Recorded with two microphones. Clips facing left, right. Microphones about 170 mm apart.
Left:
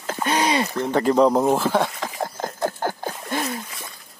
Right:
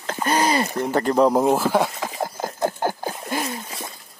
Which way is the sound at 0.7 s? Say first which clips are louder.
Left 2 dB; 10° right (ahead or behind).